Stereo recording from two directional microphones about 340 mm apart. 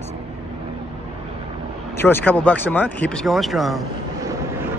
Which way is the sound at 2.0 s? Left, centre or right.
Centre.